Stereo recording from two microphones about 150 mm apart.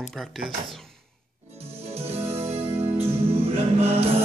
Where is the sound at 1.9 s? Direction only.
45° right (ahead or behind).